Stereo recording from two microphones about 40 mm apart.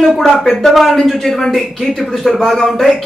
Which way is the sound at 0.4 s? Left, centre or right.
Centre.